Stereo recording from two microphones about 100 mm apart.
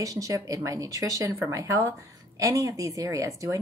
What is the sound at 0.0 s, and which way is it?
Speech, 35° right (ahead or behind).